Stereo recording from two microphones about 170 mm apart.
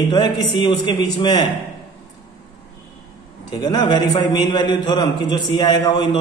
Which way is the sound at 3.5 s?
25° left (ahead or behind).